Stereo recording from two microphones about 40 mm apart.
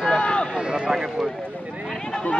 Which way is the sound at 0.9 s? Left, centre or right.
Centre.